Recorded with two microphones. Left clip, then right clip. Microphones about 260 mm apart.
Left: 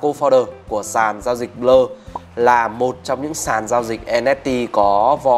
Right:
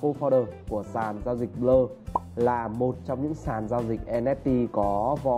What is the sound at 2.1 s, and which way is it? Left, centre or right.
Music, centre.